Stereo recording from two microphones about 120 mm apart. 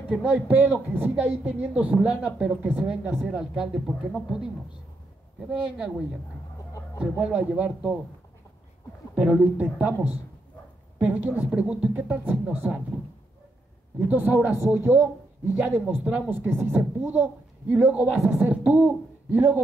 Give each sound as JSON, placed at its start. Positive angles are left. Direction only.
{"t": 0.1, "sound": "speech", "side_deg": -10}
{"t": 7.0, "sound": "speech", "side_deg": -10}
{"t": 9.1, "sound": "speech", "side_deg": -10}
{"t": 13.9, "sound": "speech", "side_deg": -15}